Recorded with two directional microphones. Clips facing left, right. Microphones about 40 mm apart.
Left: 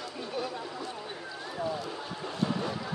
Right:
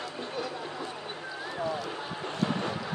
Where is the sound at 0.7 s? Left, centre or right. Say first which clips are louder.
Right 1 dB; right.